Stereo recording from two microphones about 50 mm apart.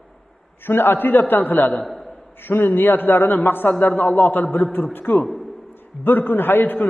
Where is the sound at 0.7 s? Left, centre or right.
Left.